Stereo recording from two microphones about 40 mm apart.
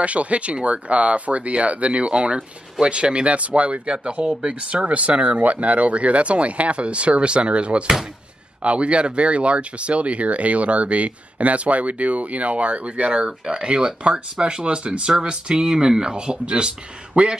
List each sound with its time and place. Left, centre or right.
0.0 s speech: right
4.8 s speech: right